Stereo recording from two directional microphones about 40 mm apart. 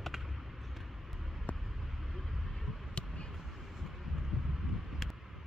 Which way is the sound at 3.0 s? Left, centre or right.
Left.